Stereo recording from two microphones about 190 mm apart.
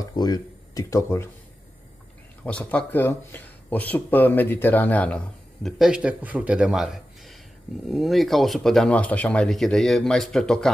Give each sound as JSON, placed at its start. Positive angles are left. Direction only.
{"t": 0.0, "sound": "speech", "side_deg": 20}
{"t": 2.4, "sound": "speech", "side_deg": 5}